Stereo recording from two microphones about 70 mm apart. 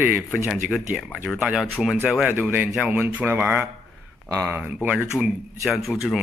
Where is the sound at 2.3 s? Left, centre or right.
Right.